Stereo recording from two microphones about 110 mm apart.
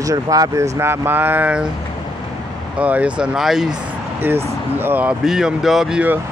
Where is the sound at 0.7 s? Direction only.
20° right (ahead or behind).